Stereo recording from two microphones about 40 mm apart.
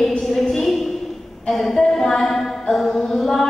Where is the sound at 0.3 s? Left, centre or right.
Centre.